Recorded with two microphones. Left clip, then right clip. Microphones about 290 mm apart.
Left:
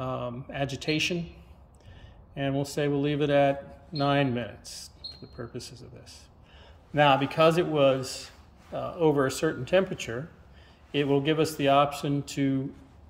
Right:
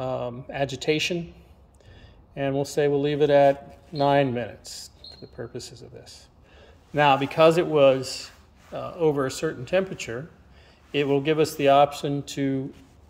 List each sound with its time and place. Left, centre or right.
0.0 s speech: centre
2.3 s a man's voice: centre
6.6 s a man's voice: centre